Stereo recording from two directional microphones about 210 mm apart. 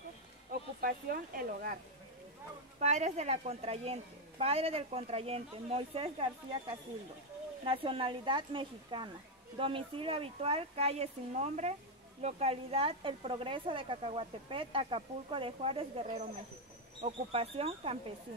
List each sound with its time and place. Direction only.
0.5 s speech: 45° right (ahead or behind)
2.8 s a woman's voice: 30° right (ahead or behind)